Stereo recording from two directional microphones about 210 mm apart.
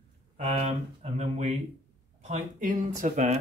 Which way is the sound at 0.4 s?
30° right (ahead or behind).